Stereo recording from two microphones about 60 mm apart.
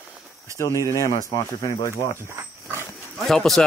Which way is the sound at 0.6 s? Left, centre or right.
Left.